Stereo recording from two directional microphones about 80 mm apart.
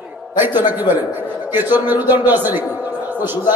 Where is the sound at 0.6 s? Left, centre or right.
Right.